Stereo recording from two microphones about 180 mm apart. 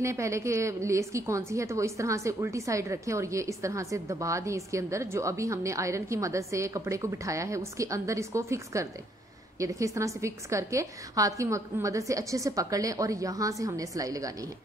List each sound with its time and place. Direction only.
0.0 s a woman's voice: 15° right (ahead or behind)